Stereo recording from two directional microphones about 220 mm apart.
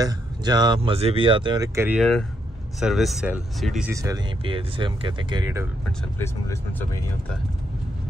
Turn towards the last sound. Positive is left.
turn(degrees=15)  # may be behind; listen again after turning